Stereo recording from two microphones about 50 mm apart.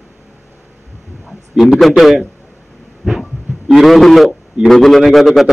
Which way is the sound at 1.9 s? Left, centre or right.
Centre.